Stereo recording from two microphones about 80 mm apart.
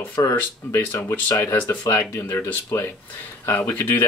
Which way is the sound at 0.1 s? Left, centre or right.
Left.